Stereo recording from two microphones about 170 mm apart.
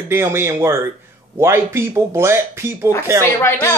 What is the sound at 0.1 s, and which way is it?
Speech, 15° right (ahead or behind).